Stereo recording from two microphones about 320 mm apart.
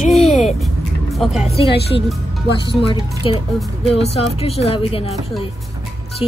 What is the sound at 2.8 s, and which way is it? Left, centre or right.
Speech, centre.